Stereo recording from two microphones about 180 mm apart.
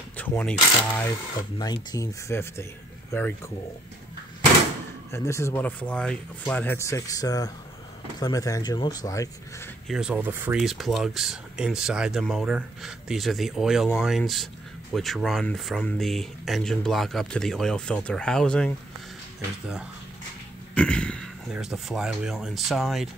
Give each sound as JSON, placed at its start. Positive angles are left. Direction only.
{"t": 0.2, "sound": "speech", "side_deg": 10}
{"t": 5.1, "sound": "speech", "side_deg": 15}
{"t": 9.8, "sound": "speech", "side_deg": -5}
{"t": 20.7, "sound": "speech", "side_deg": 5}